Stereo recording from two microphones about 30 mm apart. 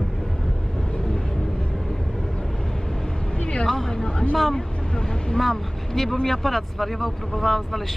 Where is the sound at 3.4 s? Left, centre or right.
Left.